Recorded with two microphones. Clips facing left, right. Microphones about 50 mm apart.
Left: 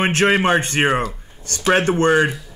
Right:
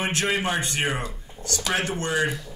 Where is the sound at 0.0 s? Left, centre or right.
Left.